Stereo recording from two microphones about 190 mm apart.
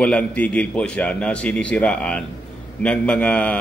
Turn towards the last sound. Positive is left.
turn(degrees=5)  # may be behind; listen again after turning